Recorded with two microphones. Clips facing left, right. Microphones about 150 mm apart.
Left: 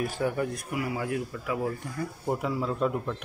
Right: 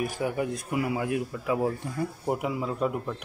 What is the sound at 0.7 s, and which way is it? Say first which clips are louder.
A man's voice: right 3 dB; 25° right (ahead or behind).